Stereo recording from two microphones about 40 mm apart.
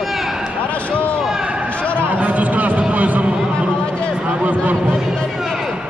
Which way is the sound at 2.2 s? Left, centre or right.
Right.